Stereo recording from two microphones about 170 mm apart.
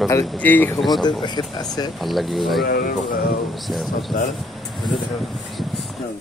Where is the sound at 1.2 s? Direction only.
25° left (ahead or behind).